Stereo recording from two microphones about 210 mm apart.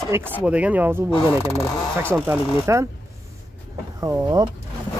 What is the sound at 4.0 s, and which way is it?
Speech, 15° right (ahead or behind).